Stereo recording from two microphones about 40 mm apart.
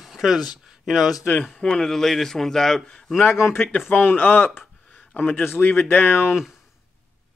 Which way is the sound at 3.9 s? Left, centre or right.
Left.